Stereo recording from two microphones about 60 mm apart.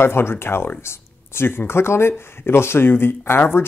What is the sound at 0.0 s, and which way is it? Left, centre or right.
Speech, left.